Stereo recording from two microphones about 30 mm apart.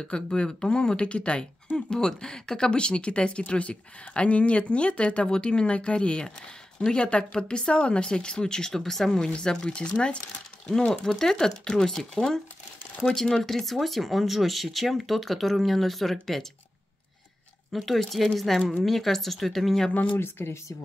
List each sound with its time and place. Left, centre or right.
0.1 s speech: left
1.9 s speech: left
9.3 s speech: left
10.9 s speech: centre
17.7 s speech: centre